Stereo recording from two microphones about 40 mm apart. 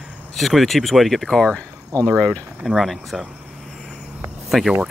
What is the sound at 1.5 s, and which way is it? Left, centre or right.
Speech, left.